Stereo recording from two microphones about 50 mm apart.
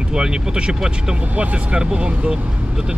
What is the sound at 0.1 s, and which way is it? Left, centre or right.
Speech, centre.